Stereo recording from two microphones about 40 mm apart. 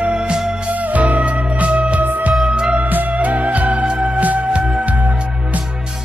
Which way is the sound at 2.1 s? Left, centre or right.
Right.